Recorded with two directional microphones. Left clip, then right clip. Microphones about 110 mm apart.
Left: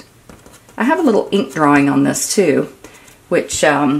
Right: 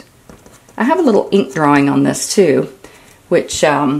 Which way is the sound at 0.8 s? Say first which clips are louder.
Right 2 dB; 25° right (ahead or behind).